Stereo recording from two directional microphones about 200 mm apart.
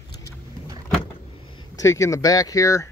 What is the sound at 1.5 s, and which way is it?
Speech, 20° left (ahead or behind).